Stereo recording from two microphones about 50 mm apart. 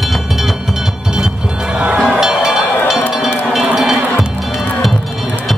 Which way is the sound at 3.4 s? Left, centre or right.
Centre.